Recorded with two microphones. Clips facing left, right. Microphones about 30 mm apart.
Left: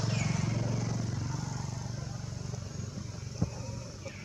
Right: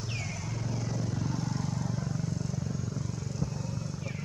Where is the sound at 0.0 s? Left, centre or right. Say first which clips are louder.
Left 4 dB; left.